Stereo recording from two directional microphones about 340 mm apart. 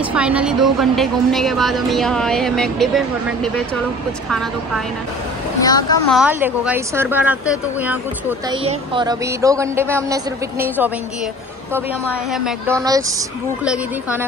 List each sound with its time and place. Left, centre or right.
0.1 s a woman's voice: centre
5.6 s speech: centre
6.1 s a woman's voice: centre
12.3 s a woman's voice: centre